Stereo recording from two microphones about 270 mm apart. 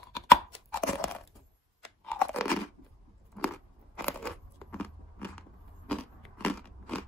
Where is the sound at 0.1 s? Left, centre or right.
Centre.